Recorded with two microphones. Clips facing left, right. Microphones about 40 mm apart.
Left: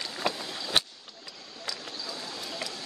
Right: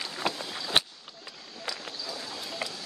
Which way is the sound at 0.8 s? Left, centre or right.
Centre.